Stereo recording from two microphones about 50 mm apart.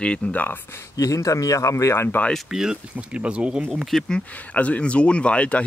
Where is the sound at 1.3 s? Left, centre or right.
Left.